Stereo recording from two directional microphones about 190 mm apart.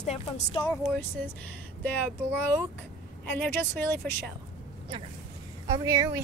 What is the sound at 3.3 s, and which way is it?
Speech, 5° left (ahead or behind).